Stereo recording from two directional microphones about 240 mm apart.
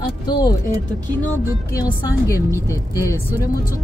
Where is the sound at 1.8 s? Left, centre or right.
Centre.